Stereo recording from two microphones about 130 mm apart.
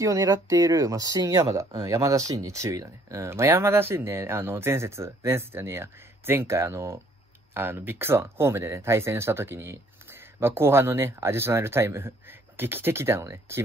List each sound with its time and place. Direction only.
0.0 s speech: 25° right (ahead or behind)